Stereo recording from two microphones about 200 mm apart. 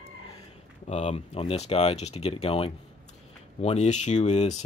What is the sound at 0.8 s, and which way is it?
Speech, 35° left (ahead or behind).